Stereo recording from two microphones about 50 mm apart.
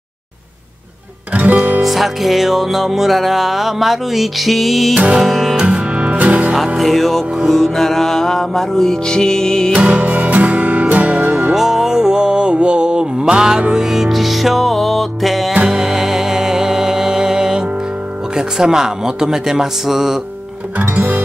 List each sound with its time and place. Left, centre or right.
1.3 s music: right
1.8 s music: centre
5.7 s music: right
6.8 s music: centre
9.8 s music: right
11.5 s music: centre
18.3 s speech: centre
20.8 s music: right